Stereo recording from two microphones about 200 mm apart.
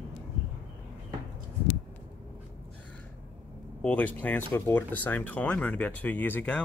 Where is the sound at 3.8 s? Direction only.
10° left (ahead or behind).